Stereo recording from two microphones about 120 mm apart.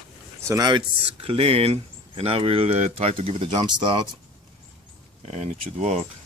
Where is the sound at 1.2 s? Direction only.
55° right (ahead or behind).